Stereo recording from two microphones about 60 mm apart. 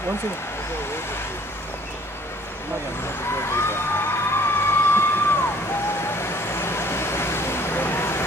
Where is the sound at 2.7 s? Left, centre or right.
Left.